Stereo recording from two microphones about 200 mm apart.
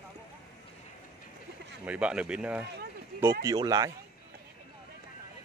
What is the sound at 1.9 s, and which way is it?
Speech, 5° right (ahead or behind).